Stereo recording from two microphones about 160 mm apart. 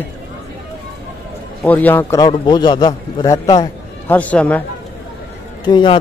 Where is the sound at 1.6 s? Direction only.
10° left (ahead or behind); by 3.6 s 25° left (ahead or behind).